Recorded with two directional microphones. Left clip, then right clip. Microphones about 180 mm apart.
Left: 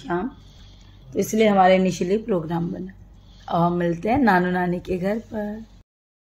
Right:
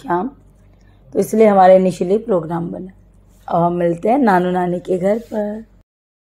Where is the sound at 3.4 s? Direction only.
20° right (ahead or behind).